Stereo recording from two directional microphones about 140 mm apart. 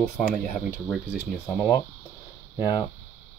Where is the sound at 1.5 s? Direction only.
20° left (ahead or behind).